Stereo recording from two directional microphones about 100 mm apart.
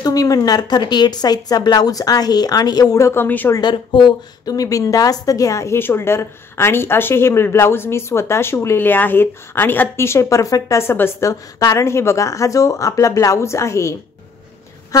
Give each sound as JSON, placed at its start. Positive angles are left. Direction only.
{"t": 0.0, "sound": "speech", "side_deg": 35}
{"t": 3.7, "sound": "a woman's voice", "side_deg": 50}